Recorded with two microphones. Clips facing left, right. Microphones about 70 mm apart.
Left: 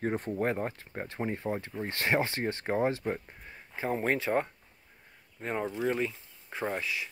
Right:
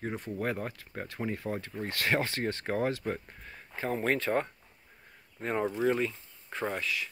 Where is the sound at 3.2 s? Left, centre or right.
Centre.